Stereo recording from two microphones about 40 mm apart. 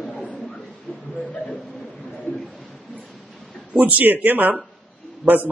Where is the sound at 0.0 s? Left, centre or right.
Centre.